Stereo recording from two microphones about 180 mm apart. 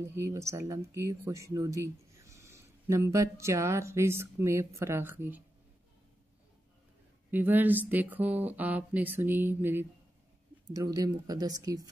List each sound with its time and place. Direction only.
0.0 s speech: 15° right (ahead or behind)
7.2 s speech: 10° right (ahead or behind)